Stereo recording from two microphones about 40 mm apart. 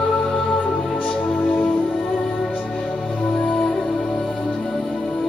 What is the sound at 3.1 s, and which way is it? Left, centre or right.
Music, left.